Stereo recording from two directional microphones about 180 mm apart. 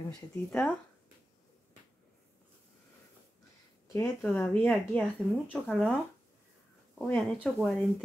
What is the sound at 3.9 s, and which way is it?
Speech, 10° left (ahead or behind).